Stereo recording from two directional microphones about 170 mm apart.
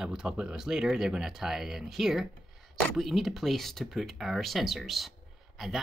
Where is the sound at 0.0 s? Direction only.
5° right (ahead or behind).